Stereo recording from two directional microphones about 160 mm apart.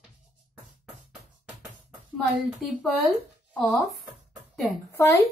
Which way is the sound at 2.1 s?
Centre (ahead or behind).